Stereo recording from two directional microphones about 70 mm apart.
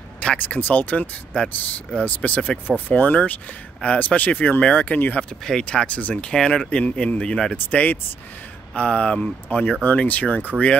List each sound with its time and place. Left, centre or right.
0.2 s speech: centre
5.4 s speech: centre
7.5 s speech: left